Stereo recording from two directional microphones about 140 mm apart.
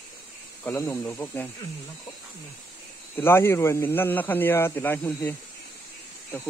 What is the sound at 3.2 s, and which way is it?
Speech, 15° left (ahead or behind).